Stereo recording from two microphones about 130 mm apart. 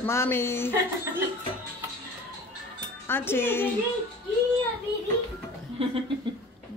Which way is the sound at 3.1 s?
15° left (ahead or behind).